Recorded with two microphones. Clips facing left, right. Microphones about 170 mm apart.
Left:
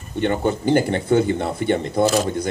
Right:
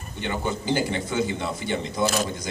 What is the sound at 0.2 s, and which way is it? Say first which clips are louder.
Speech: left 8 dB; 55° left (ahead or behind).